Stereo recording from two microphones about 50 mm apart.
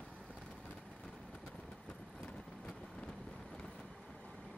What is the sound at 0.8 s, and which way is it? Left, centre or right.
Vehicle, centre.